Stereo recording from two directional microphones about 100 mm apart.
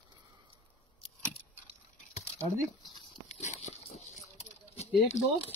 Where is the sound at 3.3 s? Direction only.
90° left.